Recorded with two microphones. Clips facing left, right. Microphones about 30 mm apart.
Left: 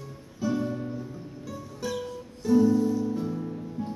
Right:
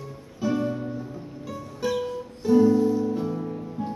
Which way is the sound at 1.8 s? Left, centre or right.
Centre.